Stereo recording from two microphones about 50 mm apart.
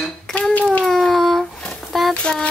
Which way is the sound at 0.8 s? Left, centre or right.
Centre.